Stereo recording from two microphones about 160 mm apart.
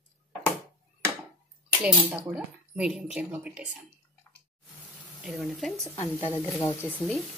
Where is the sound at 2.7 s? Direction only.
5° right (ahead or behind).